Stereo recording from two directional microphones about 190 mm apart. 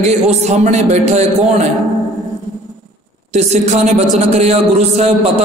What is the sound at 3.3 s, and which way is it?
A man's voice, 35° right (ahead or behind).